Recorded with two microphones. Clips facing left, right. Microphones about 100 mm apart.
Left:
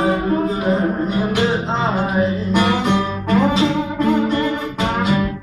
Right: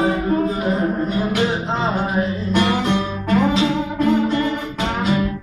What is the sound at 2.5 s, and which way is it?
Music, 15° left (ahead or behind).